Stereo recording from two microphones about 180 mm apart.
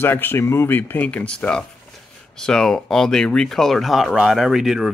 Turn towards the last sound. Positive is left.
turn(degrees=0)  # may be behind; listen again after turning